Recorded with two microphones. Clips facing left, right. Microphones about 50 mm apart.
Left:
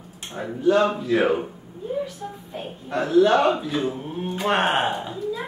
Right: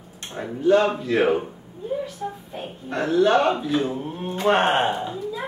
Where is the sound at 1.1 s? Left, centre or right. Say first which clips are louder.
Right 1 dB; centre.